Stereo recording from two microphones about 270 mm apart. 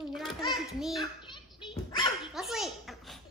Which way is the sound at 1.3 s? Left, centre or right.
Centre.